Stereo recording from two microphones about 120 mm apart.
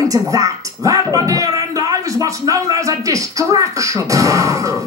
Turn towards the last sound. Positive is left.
turn(degrees=-25)  # may be behind; listen again after turning